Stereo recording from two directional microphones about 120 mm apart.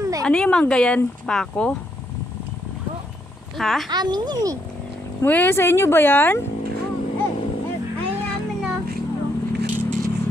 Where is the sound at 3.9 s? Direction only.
35° right (ahead or behind).